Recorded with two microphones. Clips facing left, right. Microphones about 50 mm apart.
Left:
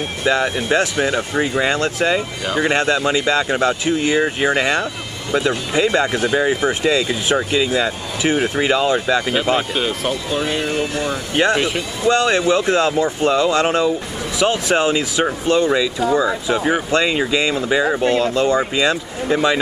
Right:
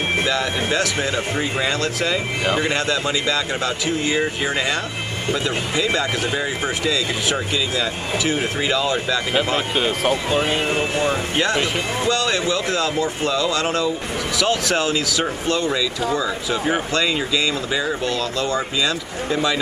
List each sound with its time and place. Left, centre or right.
1.0 s speech: left
10.4 s speech: right
11.3 s speech: left